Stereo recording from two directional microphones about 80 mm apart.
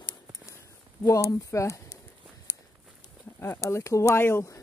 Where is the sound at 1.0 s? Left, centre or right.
Left.